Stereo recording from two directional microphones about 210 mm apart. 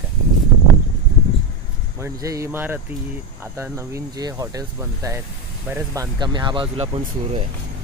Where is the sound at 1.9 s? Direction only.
15° right (ahead or behind).